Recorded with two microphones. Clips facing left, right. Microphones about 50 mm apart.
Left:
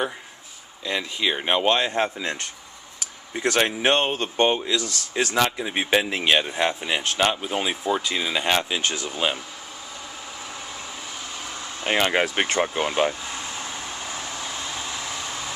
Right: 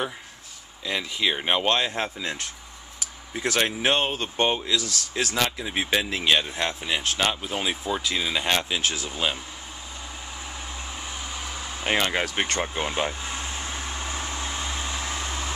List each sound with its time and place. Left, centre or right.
0.8 s speech: centre
11.1 s vehicle: centre
12.0 s speech: centre
12.5 s speech: centre
13.1 s air conditioning: centre
15.0 s vehicle: right